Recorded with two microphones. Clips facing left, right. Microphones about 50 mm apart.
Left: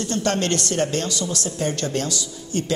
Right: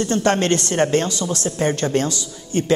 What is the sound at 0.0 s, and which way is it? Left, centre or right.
A man's voice, right.